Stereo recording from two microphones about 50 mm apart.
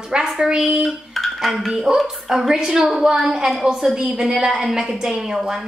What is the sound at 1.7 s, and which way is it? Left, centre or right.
A woman's voice, centre.